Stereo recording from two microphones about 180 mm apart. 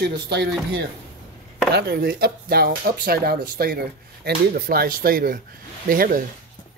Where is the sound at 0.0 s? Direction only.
65° right (ahead or behind).